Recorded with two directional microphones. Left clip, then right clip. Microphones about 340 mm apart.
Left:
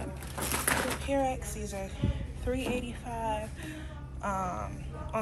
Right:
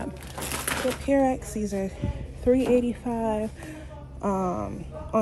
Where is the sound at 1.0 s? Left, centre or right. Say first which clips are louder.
Right 7 dB; right.